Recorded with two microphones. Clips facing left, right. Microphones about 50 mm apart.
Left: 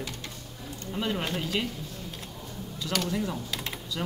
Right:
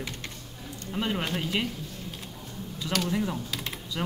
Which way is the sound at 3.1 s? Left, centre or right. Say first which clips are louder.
Right 1 dB; centre.